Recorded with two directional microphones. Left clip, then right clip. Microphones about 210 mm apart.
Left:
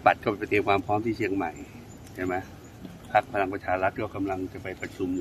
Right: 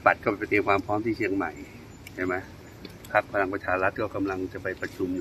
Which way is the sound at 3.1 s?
15° left (ahead or behind).